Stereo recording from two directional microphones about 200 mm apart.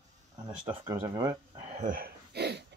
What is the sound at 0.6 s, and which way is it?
Speech, 20° right (ahead or behind).